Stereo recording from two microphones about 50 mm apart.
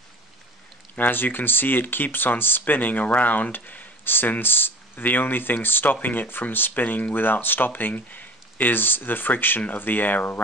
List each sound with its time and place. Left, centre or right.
0.9 s speech: left